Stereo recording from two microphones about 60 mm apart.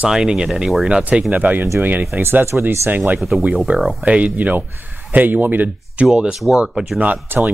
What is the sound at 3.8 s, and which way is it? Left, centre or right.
Speech, centre.